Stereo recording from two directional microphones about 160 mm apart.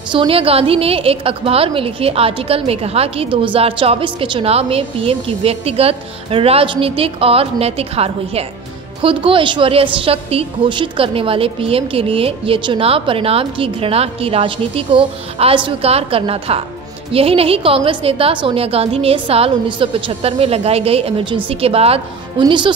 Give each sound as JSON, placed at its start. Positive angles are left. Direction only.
{"t": 0.1, "sound": "a woman's voice", "side_deg": -35}